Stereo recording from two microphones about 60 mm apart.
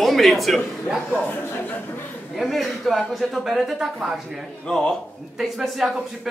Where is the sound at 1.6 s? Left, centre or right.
Left.